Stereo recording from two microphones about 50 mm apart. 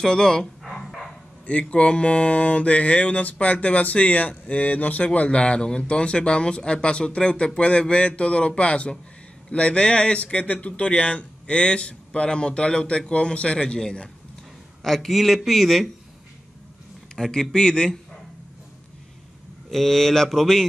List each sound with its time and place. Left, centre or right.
0.0 s speech: centre
0.7 s dog: centre
1.5 s a sound: left
14.8 s speech: centre
17.1 s speech: centre
19.7 s speech: centre